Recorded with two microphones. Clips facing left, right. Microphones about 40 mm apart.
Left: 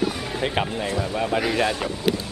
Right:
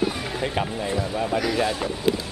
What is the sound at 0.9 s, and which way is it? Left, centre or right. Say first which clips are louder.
Speech: even; centre.